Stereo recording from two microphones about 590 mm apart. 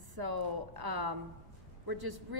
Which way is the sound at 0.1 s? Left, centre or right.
Right.